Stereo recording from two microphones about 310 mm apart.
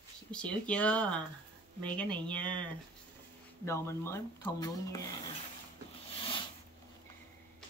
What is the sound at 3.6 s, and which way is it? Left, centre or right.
Speech, centre.